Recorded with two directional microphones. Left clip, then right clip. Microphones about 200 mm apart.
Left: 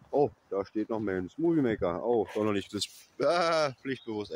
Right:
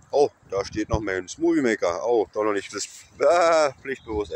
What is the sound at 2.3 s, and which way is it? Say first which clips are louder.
Speech: right 6 dB; 20° left (ahead or behind).